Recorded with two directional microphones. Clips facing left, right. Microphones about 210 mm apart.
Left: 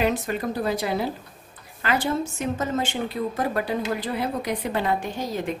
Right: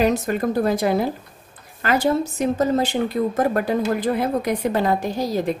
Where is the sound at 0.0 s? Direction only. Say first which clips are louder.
Right 5 dB; 45° right (ahead or behind).